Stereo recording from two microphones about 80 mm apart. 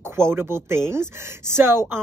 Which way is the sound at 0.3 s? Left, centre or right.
Right.